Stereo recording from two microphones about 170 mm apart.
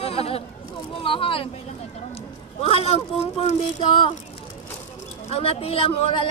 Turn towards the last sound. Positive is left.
turn(degrees=35)  # may be behind; listen again after turning